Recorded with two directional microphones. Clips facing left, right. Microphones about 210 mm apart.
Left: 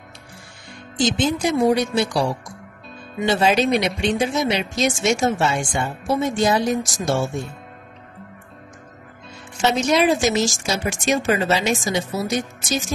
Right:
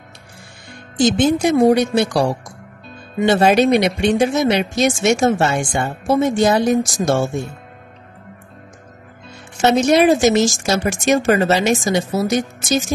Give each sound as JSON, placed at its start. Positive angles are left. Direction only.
{"t": 0.9, "sound": "a woman's voice", "side_deg": -55}
{"t": 9.6, "sound": "a woman's voice", "side_deg": -60}